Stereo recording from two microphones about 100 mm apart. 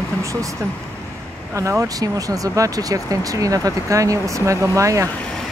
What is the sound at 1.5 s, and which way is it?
Speech, 30° right (ahead or behind).